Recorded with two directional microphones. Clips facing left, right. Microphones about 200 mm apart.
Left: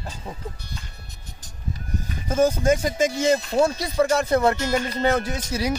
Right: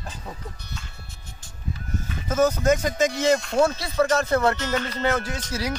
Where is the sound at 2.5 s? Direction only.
30° left (ahead or behind).